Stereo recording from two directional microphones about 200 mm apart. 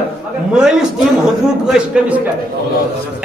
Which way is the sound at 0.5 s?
5° right (ahead or behind).